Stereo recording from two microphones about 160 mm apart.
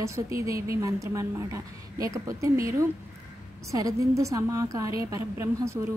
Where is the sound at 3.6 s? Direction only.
20° right (ahead or behind).